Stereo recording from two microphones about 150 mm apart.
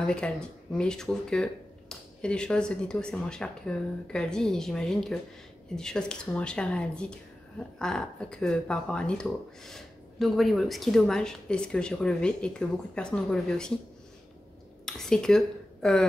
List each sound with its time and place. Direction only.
0.0 s speech: 5° left (ahead or behind)
14.9 s a woman's voice: 5° left (ahead or behind)